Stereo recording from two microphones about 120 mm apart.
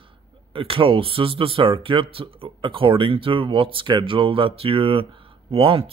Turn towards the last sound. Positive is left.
turn(degrees=-50)  # may be behind; listen again after turning